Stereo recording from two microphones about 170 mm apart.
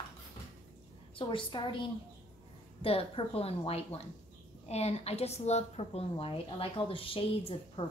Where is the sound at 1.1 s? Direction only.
30° left (ahead or behind).